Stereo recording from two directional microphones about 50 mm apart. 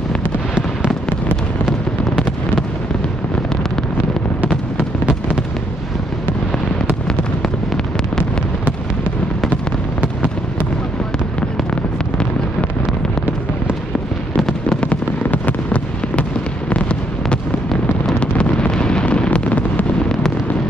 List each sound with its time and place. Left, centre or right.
4.7 s fireworks: right
14.3 s fireworks: centre
15.2 s fireworks: left
18.2 s fireworks: left